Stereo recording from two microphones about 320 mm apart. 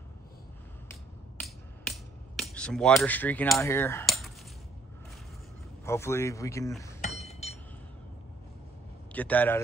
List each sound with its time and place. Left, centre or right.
1.4 s a sound: centre
5.9 s a man's voice: centre
7.2 s chink: centre
9.1 s a man's voice: centre